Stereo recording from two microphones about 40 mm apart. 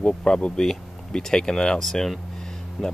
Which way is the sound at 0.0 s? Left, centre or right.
Left.